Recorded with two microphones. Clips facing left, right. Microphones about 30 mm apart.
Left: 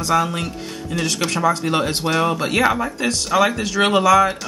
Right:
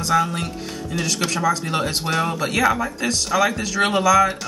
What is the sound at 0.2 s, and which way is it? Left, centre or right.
Speech, left.